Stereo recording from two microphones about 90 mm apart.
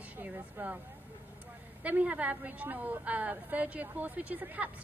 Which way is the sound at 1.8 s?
15° right (ahead or behind).